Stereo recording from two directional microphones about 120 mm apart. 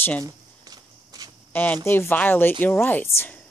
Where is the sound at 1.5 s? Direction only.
15° left (ahead or behind).